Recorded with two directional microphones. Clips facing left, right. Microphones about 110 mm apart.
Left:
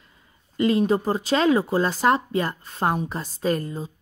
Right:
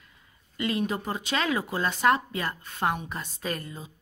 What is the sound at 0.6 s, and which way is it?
Speech, 30° left (ahead or behind).